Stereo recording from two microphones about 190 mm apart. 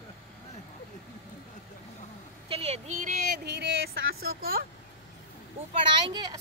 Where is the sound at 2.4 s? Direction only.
30° right (ahead or behind).